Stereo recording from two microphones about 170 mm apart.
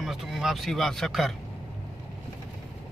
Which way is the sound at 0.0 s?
Centre (ahead or behind).